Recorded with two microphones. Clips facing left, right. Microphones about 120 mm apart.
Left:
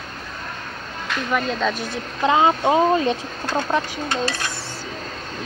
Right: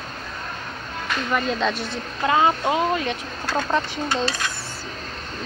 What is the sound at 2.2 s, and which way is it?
Speech, 20° left (ahead or behind).